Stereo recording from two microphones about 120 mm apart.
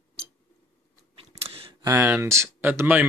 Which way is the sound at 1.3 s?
55° right (ahead or behind).